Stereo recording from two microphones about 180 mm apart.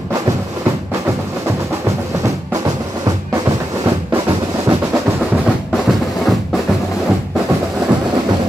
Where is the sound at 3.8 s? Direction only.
15° right (ahead or behind).